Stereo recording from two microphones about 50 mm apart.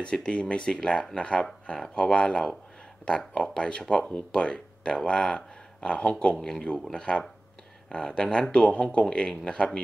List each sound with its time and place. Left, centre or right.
0.0 s speech: left